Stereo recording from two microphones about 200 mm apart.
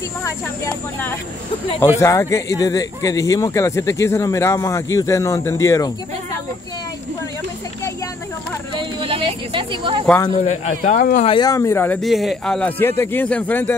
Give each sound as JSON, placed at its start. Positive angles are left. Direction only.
{"t": 0.2, "sound": "speech", "side_deg": 10}
{"t": 8.7, "sound": "speech", "side_deg": -25}
{"t": 10.4, "sound": "a man's voice", "side_deg": 35}
{"t": 10.8, "sound": "speech", "side_deg": 45}
{"t": 11.2, "sound": "speech", "side_deg": 20}
{"t": 12.0, "sound": "speech", "side_deg": 0}